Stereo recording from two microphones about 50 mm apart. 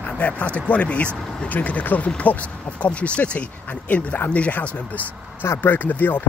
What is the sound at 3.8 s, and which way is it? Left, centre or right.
Speech, left.